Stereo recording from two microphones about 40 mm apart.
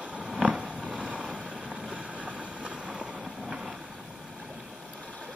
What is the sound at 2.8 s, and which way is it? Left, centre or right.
Vehicle, right.